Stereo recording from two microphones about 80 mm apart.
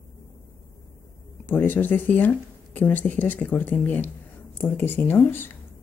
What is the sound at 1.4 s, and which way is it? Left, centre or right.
Speech, left.